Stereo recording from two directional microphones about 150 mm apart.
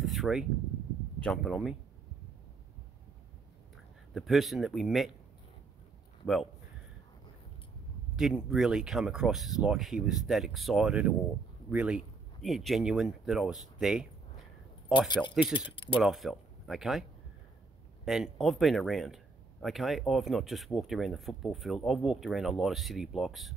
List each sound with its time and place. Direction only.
0.0 s a sound: centre (ahead or behind)
1.2 s speech: 5° left (ahead or behind)
4.1 s speech: centre (ahead or behind)
6.2 s speech: centre (ahead or behind)
8.2 s speech: centre (ahead or behind)
14.9 s speech: 30° left (ahead or behind)
16.0 s speech: centre (ahead or behind)
18.0 s speech: centre (ahead or behind)